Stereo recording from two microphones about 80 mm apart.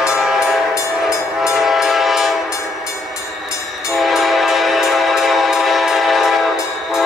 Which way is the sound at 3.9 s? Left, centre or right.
Centre.